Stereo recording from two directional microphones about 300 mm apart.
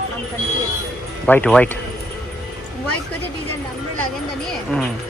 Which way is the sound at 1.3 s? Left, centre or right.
Centre.